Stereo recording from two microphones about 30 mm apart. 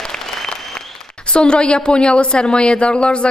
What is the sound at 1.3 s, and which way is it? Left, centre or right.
A man's voice, left.